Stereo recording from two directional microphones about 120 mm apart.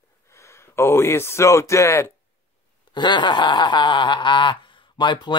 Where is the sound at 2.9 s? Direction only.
40° left (ahead or behind).